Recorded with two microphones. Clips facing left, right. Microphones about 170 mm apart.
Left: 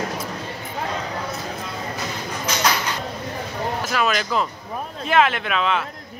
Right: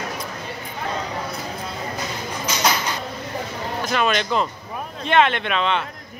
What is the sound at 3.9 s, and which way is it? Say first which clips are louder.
Speech: right 3 dB; 5° left (ahead or behind).